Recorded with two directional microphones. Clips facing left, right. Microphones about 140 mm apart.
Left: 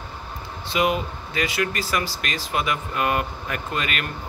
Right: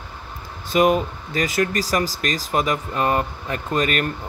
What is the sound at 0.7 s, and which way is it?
Speech, 45° right (ahead or behind).